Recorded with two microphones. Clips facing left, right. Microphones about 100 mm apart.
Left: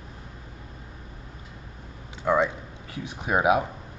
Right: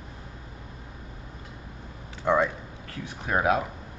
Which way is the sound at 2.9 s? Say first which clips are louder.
Left 2 dB; 15° left (ahead or behind).